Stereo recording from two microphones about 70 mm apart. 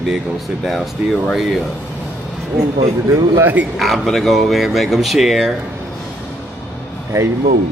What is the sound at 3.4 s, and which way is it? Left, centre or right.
Speech, right.